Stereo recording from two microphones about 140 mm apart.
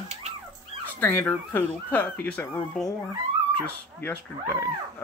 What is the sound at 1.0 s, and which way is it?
Speech, 15° left (ahead or behind).